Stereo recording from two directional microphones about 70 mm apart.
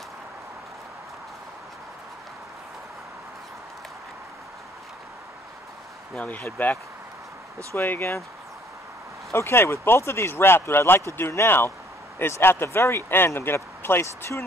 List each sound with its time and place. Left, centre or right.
6.1 s speech: left
9.3 s speech: left